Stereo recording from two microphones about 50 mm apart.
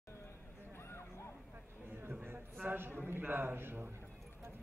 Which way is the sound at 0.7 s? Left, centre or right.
Left.